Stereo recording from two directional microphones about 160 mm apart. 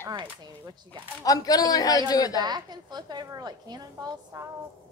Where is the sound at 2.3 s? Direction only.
25° right (ahead or behind).